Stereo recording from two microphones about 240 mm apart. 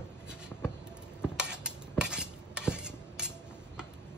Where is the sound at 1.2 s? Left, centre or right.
Centre.